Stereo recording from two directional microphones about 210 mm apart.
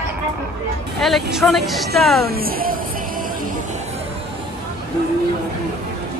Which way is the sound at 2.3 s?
45° right (ahead or behind).